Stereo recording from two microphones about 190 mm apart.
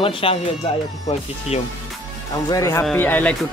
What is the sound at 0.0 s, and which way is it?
Music, 30° left (ahead or behind).